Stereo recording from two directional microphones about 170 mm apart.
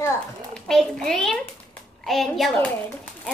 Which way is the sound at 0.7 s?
5° left (ahead or behind).